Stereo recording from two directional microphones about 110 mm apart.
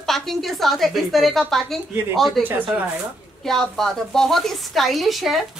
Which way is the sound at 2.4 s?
15° right (ahead or behind).